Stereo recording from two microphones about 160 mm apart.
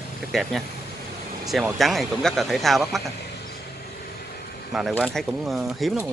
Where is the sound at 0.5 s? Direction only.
5° left (ahead or behind).